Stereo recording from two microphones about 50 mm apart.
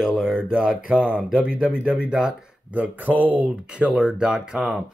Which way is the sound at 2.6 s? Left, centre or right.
Right.